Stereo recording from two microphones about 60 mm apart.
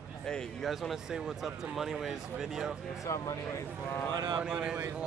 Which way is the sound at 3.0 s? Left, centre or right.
Left.